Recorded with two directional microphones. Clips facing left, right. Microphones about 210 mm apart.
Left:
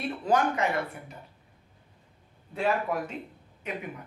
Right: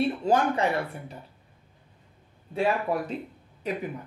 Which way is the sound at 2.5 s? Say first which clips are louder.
Right 2 dB; 35° right (ahead or behind).